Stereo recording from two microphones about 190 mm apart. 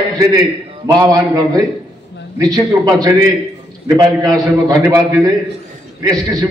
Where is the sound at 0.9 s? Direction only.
20° right (ahead or behind).